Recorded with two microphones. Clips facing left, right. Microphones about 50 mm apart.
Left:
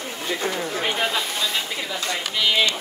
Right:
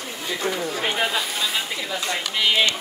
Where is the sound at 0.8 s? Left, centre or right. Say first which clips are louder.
Left 1 dB; centre.